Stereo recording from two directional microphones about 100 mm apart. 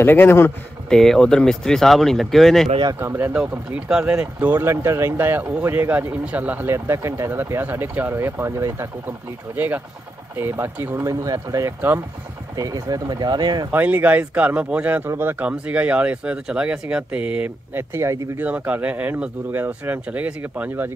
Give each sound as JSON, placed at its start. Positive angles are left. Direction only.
{"t": 0.0, "sound": "speech", "side_deg": 20}
{"t": 0.8, "sound": "speech", "side_deg": 5}
{"t": 3.0, "sound": "speech", "side_deg": -25}
{"t": 10.3, "sound": "speech", "side_deg": -25}
{"t": 11.1, "sound": "speech", "side_deg": -35}
{"t": 13.7, "sound": "speech", "side_deg": -15}
{"t": 18.4, "sound": "speech", "side_deg": -15}